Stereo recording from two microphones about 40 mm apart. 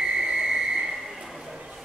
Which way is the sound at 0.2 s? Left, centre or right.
Centre.